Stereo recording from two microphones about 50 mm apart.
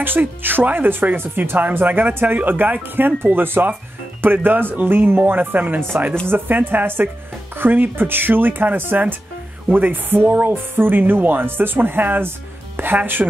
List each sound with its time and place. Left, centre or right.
0.0 s speech: right